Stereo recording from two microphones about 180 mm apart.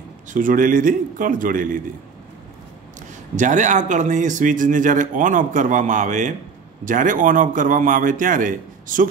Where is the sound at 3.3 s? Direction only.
45° right (ahead or behind).